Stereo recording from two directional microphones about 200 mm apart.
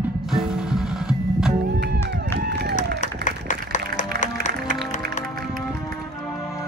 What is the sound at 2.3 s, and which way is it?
Run, 55° right (ahead or behind).